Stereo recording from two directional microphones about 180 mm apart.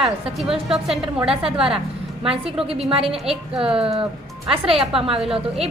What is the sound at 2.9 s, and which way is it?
Speech, 30° right (ahead or behind).